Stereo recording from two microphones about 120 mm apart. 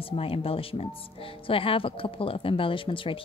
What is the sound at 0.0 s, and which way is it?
Speech, 50° left (ahead or behind).